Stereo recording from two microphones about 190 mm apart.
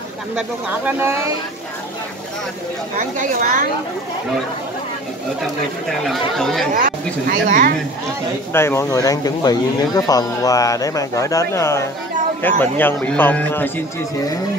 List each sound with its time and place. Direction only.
0.4 s speech: 10° right (ahead or behind)
3.0 s speech: 45° right (ahead or behind)
5.9 s speech: centre (ahead or behind)
6.7 s speech: 45° right (ahead or behind)
8.5 s speech: 15° left (ahead or behind)